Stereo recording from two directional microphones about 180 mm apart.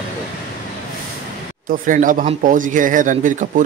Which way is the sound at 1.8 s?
50° right (ahead or behind).